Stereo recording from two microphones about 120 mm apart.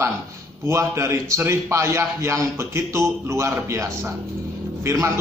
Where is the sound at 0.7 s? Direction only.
25° right (ahead or behind).